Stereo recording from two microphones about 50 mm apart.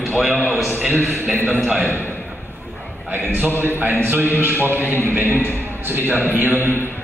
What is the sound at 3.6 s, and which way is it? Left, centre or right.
A man's voice, right.